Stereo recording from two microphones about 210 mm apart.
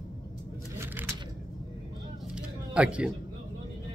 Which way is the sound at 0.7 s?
10° right (ahead or behind).